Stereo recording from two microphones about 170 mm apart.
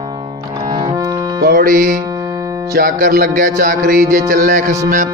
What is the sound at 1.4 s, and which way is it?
Music, 55° right (ahead or behind).